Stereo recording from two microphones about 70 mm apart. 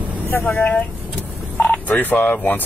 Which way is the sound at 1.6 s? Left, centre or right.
Left.